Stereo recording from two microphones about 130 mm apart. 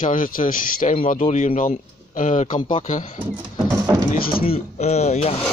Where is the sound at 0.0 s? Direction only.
90° left.